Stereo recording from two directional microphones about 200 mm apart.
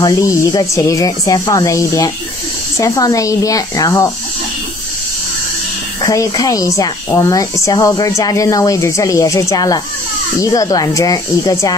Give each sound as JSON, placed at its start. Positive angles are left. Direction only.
{"t": 0.0, "sound": "speech", "side_deg": 15}
{"t": 6.0, "sound": "speech", "side_deg": 15}